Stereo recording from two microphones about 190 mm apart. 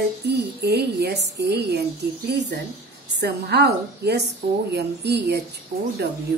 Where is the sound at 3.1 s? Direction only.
60° right (ahead or behind).